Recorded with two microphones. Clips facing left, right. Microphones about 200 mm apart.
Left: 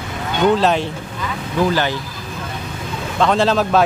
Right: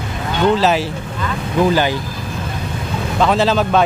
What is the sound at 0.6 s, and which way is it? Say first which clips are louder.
Speech: right 1 dB; 5° right (ahead or behind).